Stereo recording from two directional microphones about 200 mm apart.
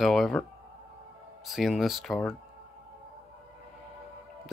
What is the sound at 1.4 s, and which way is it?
Speech, centre (ahead or behind).